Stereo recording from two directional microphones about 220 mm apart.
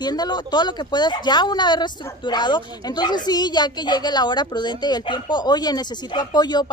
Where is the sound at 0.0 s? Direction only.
20° left (ahead or behind).